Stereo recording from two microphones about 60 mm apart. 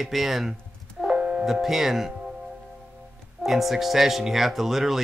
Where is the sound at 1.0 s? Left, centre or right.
Centre.